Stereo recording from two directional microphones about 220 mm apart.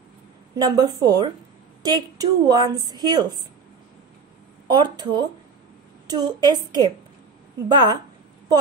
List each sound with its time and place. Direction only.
0.6 s a woman's voice: 15° right (ahead or behind)
4.7 s a woman's voice: 20° right (ahead or behind)